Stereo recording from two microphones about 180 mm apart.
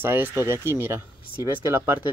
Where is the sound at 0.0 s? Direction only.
10° right (ahead or behind).